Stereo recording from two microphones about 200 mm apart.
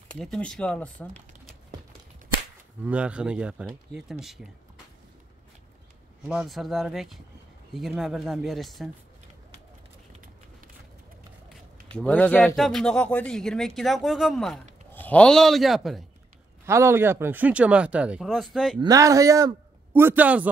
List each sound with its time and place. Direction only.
0.1 s speech: 5° left (ahead or behind)
2.8 s speech: 5° right (ahead or behind)
6.2 s speech: centre (ahead or behind)
12.0 s speech: 5° left (ahead or behind)
16.6 s speech: 15° right (ahead or behind)
18.8 s a man's voice: 15° right (ahead or behind)